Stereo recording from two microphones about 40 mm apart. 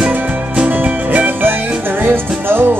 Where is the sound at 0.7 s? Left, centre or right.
Right.